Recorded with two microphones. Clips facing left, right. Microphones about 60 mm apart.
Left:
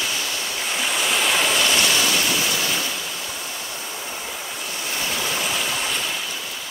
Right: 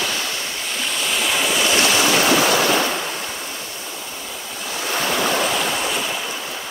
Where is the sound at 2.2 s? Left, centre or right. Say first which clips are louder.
Right 7 dB; right.